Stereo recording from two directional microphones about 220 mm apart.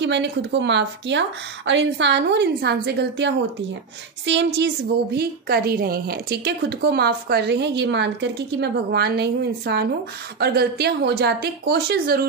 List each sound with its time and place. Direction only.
0.0 s a woman's voice: 50° right (ahead or behind)